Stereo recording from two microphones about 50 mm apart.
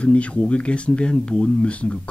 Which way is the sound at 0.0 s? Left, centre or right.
Left.